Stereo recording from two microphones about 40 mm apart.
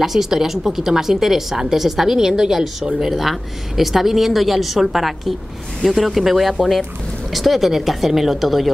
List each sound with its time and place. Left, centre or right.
0.0 s a woman's voice: centre